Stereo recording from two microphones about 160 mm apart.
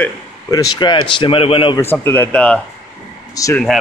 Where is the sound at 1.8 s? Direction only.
15° left (ahead or behind).